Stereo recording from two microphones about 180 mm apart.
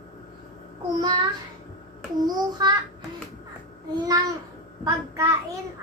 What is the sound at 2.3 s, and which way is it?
Speech, 25° right (ahead or behind).